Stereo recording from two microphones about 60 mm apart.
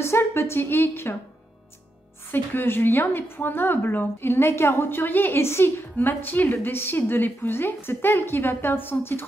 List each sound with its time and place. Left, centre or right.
0.0 s a woman's voice: left
2.3 s a woman's voice: left
5.9 s a woman's voice: left